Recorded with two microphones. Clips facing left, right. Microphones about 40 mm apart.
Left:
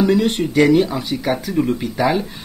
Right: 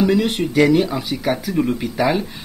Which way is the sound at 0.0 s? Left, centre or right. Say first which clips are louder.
Left 1 dB; centre.